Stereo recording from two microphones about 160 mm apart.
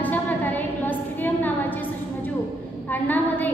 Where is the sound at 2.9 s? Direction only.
10° left (ahead or behind).